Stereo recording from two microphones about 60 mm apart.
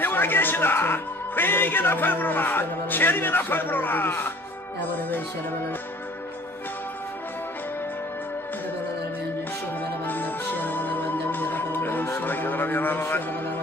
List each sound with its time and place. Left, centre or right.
0.0 s a man's voice: left
10.0 s music: left